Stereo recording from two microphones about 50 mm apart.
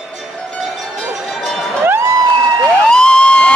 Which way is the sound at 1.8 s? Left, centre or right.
Right.